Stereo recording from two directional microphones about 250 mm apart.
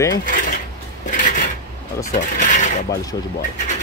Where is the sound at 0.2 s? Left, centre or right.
Left.